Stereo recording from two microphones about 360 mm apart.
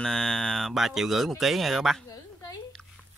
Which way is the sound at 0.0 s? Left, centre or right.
Centre.